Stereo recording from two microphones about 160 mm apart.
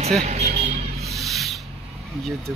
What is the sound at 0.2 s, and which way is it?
Vehicle, 45° right (ahead or behind).